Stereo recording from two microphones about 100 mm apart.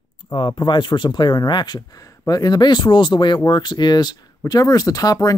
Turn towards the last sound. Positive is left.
turn(degrees=35)  # may be behind; listen again after turning